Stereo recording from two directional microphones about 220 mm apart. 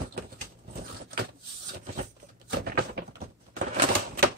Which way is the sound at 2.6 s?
45° right (ahead or behind).